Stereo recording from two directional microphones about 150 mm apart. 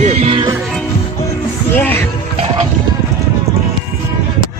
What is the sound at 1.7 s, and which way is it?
Music, 15° left (ahead or behind).